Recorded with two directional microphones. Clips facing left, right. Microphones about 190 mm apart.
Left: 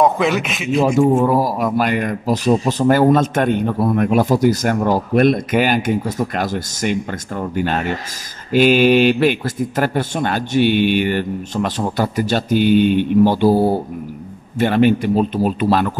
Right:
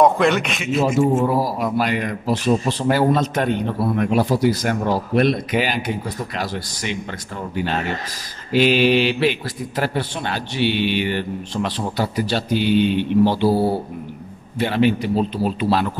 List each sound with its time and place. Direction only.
0.0 s a man's voice: centre (ahead or behind)
0.9 s speech: 55° left (ahead or behind)